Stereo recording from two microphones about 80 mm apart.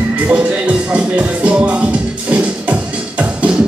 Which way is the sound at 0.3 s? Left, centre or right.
Centre.